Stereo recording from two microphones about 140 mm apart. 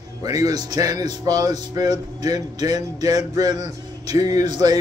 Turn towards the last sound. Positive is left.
turn(degrees=-30)  # may be behind; listen again after turning